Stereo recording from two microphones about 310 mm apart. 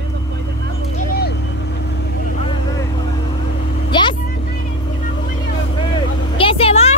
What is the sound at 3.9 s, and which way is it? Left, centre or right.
Vehicle, centre.